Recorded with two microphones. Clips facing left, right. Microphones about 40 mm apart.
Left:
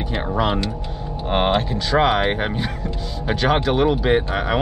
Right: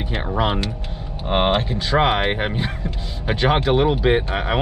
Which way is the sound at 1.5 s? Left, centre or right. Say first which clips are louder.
Even; right.